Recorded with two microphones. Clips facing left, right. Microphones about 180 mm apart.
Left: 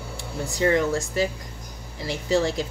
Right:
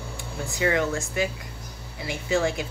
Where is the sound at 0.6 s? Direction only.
35° left (ahead or behind).